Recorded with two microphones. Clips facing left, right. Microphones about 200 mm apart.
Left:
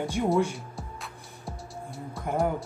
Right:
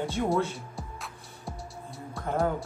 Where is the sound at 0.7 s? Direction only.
Centre (ahead or behind).